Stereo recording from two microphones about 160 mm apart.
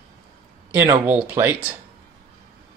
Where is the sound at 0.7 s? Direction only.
10° right (ahead or behind).